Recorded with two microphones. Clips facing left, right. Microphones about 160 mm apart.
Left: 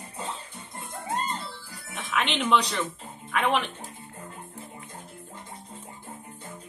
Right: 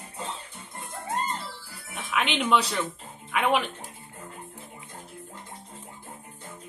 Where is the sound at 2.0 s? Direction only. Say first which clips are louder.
Even; 5° right (ahead or behind).